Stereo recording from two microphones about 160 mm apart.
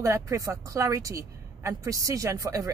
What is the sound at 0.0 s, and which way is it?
Speech, 20° right (ahead or behind).